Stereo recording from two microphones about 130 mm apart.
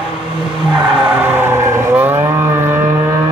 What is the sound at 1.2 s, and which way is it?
Vehicle, 15° right (ahead or behind).